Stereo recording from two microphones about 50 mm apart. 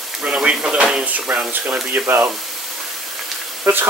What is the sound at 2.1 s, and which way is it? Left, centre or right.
Speech, right.